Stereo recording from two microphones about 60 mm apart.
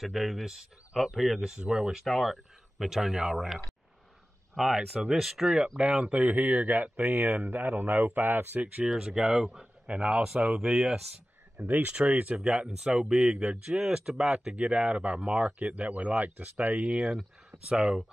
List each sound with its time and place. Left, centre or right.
0.0 s speech: centre
1.4 s speech: centre; by 8.8 s right
8.8 s speech: centre
9.8 s speech: centre
11.5 s speech: right
11.9 s speech: centre